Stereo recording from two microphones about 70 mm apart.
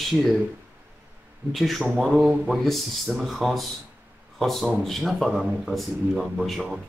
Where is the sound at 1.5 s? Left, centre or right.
Centre.